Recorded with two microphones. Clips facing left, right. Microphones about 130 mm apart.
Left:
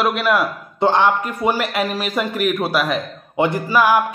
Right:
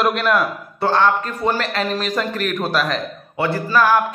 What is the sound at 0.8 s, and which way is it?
A man's voice, 15° left (ahead or behind).